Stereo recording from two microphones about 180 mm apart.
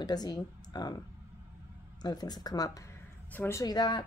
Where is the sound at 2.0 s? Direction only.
25° left (ahead or behind).